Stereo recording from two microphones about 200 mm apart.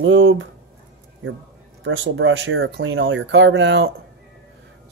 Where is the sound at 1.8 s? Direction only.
70° right (ahead or behind).